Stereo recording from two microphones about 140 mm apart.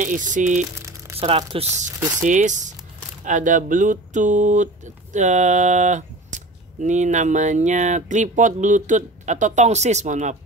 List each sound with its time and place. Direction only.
0.0 s speech: 65° right (ahead or behind)
1.2 s speech: 40° right (ahead or behind)
2.2 s speech: 60° right (ahead or behind)